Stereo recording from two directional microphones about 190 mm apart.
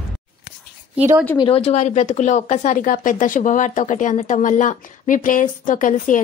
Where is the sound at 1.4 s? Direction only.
30° left (ahead or behind).